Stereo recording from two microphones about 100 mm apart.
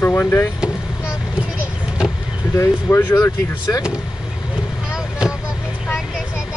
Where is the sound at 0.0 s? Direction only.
20° left (ahead or behind).